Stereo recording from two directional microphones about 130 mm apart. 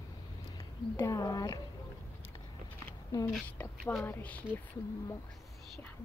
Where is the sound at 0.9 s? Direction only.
25° left (ahead or behind).